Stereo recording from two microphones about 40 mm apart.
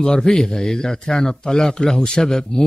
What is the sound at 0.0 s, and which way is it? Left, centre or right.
A man's voice, centre.